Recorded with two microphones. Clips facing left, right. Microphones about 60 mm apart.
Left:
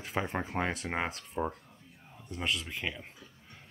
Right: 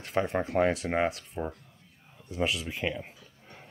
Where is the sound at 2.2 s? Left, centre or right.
Centre.